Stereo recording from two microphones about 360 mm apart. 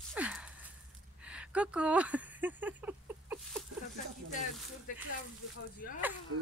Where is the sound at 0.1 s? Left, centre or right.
Centre.